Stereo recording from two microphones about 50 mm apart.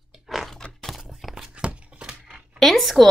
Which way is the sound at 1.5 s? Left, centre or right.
Right.